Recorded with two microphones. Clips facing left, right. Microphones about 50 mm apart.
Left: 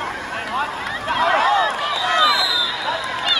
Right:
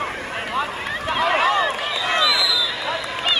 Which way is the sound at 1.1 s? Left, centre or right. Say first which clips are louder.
Left 2 dB; centre.